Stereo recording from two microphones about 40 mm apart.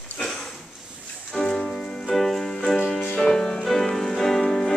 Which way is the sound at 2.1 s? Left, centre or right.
Centre.